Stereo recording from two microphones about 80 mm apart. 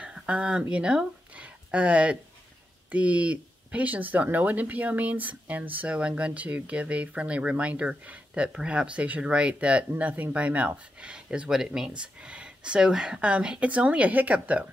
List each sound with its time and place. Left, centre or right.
0.0 s speech: centre